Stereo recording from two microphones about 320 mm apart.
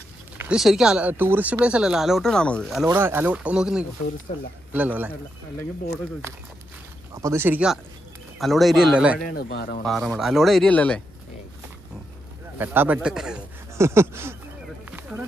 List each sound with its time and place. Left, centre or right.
0.4 s speech: centre
7.2 s speech: centre
9.3 s speech: left
9.8 s speech: centre
12.5 s speech: centre
14.9 s a sound: centre